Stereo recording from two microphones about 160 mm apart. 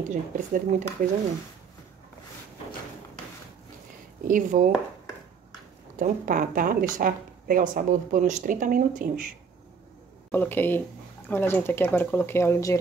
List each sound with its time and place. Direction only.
0.1 s speech: 50° right (ahead or behind)
4.2 s speech: 55° right (ahead or behind)
5.9 s speech: 60° right (ahead or behind)
10.3 s speech: 10° left (ahead or behind)